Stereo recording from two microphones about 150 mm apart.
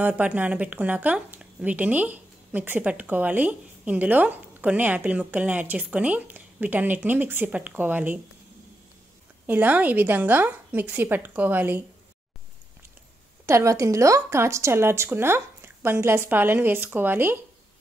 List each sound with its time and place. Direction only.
0.0 s speech: 10° right (ahead or behind)
9.5 s speech: 10° right (ahead or behind)
13.5 s speech: 20° right (ahead or behind)